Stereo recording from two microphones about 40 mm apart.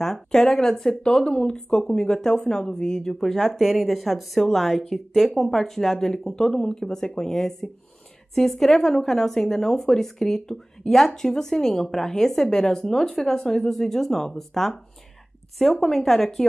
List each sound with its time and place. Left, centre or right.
0.0 s speech: centre
3.2 s a woman's voice: centre